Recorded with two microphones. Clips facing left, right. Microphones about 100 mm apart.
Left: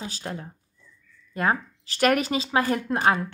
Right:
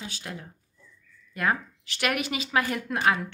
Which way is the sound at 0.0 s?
35° left (ahead or behind).